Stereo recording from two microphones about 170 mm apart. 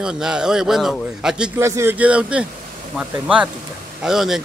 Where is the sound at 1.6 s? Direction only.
15° right (ahead or behind).